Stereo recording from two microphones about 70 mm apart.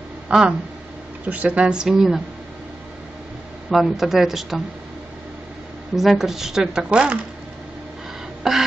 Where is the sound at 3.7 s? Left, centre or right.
Centre.